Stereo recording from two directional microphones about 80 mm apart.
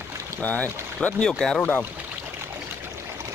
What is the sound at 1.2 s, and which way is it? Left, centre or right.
Speech, centre.